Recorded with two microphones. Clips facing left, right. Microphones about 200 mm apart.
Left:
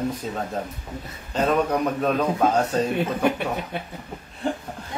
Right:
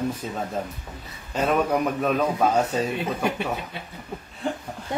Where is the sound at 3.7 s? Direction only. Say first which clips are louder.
Left 6 dB; 55° left (ahead or behind).